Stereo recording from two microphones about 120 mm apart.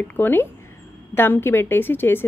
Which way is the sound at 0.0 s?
15° left (ahead or behind).